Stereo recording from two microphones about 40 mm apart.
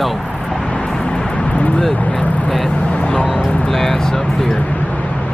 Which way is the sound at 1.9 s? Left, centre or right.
Left.